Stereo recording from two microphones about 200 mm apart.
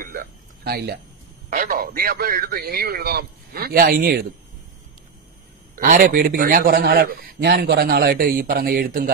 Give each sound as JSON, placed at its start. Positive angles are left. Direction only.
{"t": 0.0, "sound": "a sound", "side_deg": -45}
{"t": 1.5, "sound": "a man's voice", "side_deg": -45}
{"t": 5.8, "sound": "a man's voice", "side_deg": -40}